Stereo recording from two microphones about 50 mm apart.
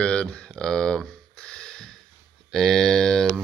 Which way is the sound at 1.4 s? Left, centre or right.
Centre.